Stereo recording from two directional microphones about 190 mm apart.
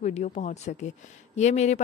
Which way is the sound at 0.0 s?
40° left (ahead or behind).